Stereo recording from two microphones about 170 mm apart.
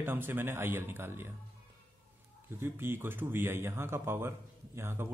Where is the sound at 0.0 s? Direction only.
10° right (ahead or behind).